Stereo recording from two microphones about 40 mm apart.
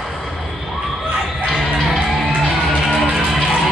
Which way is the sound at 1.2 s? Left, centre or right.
Centre.